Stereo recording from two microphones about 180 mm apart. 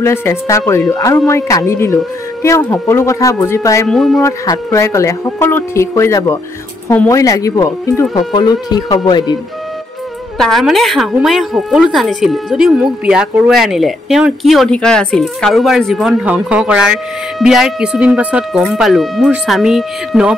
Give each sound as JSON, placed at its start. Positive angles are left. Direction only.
{"t": 0.0, "sound": "speech", "side_deg": 15}
{"t": 3.9, "sound": "speech", "side_deg": 0}
{"t": 4.2, "sound": "speech", "side_deg": 15}
{"t": 10.3, "sound": "speech", "side_deg": 0}